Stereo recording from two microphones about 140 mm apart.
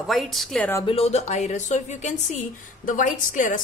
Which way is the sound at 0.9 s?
50° left (ahead or behind).